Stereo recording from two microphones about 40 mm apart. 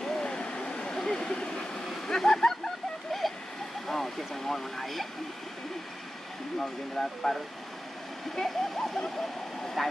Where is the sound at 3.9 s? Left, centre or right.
Centre.